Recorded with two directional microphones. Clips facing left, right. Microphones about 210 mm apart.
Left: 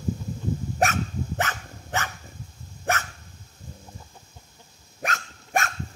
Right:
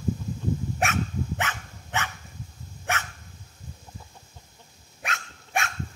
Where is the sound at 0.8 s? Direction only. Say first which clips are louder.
Left 5 dB; 40° left (ahead or behind).